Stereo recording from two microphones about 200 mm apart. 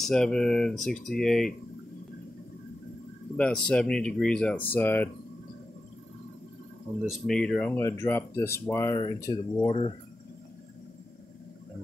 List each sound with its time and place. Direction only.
0.0 s speech: 5° left (ahead or behind)
3.3 s speech: 5° left (ahead or behind)
7.1 s speech: 5° left (ahead or behind); by 9.9 s 25° left (ahead or behind)